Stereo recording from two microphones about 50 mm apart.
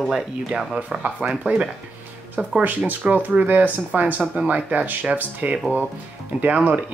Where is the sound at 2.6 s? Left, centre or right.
Right.